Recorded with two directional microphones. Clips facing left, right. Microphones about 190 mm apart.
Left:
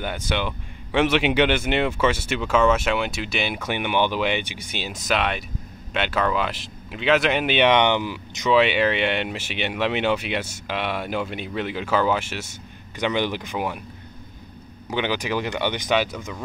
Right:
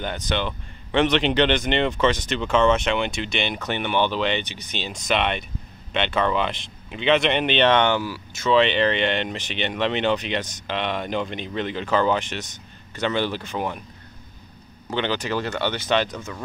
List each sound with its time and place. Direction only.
0.0 s speech: 10° left (ahead or behind)
14.9 s speech: 10° left (ahead or behind)